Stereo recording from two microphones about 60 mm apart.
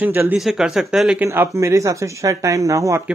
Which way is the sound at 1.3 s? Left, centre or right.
Right.